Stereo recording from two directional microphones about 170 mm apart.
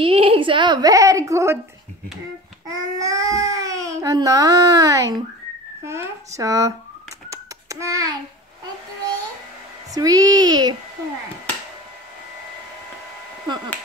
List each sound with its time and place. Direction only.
0.0 s a woman's voice: 30° right (ahead or behind); by 1.6 s 15° right (ahead or behind)
2.7 s speech: 20° right (ahead or behind)
7.2 s a sound: 20° right (ahead or behind)
9.9 s speech: 20° right (ahead or behind)